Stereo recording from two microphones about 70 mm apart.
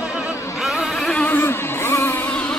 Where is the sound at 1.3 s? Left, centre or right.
Left.